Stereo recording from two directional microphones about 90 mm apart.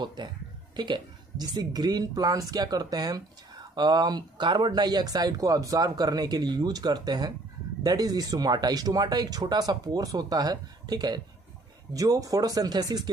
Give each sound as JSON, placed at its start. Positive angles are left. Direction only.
{"t": 0.0, "sound": "speech", "side_deg": -55}